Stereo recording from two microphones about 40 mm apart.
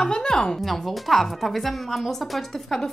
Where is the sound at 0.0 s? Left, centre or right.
Centre.